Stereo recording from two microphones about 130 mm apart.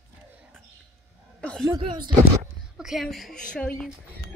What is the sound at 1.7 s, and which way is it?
Speech, 35° right (ahead or behind).